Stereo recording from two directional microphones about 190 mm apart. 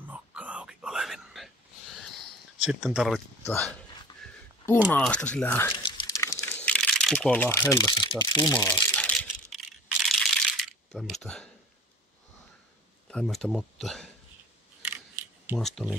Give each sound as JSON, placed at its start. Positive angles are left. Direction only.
{"t": 0.1, "sound": "whispering", "side_deg": -5}
{"t": 2.0, "sound": "a sound", "side_deg": 0}
{"t": 3.4, "sound": "speech", "side_deg": 10}
{"t": 4.9, "sound": "speech", "side_deg": 5}
{"t": 5.7, "sound": "crumpling", "side_deg": 25}
{"t": 8.5, "sound": "a sound", "side_deg": 10}
{"t": 13.1, "sound": "speech", "side_deg": 0}
{"t": 14.9, "sound": "camera", "side_deg": -10}
{"t": 15.6, "sound": "speech", "side_deg": 0}